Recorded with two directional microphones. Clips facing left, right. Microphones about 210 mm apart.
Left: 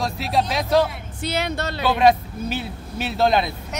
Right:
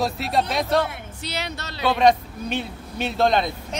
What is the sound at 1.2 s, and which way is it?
Speech, 50° left (ahead or behind).